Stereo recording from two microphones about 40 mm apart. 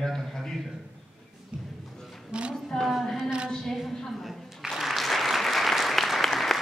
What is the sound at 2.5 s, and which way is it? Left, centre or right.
Speech, centre.